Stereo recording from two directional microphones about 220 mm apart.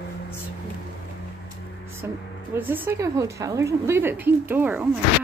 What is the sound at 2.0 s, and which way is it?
A woman's voice, 10° right (ahead or behind).